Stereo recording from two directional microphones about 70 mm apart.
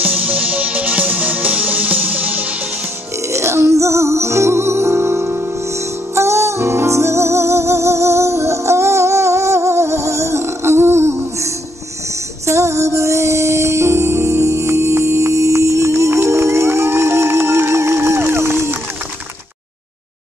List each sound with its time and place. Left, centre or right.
0.0 s music: right
3.3 s music: right